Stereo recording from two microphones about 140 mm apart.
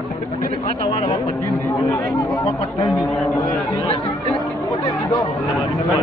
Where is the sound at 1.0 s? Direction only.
25° left (ahead or behind).